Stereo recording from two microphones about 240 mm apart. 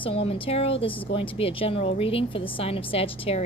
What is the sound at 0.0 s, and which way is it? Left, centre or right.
Speech, left.